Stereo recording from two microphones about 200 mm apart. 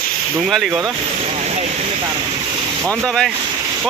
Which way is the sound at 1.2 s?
30° right (ahead or behind).